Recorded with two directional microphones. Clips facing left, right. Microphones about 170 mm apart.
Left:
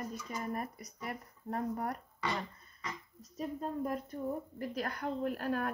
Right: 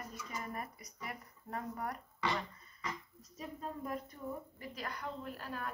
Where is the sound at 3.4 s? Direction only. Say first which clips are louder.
Left 7 dB; 45° left (ahead or behind).